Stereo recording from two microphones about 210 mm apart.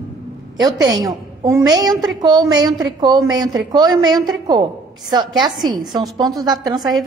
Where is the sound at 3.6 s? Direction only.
20° right (ahead or behind).